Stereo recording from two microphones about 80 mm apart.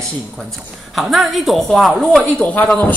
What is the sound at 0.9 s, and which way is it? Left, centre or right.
Speech, centre.